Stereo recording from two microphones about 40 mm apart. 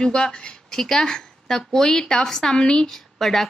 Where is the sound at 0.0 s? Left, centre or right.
Centre.